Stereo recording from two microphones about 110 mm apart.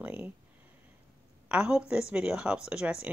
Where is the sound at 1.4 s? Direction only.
10° right (ahead or behind).